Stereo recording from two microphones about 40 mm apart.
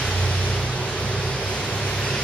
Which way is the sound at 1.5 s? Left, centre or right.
Centre.